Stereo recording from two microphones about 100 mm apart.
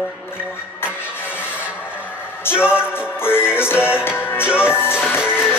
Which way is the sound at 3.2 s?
20° left (ahead or behind).